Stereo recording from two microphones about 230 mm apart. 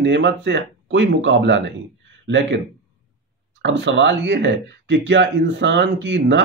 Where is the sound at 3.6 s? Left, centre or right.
Right.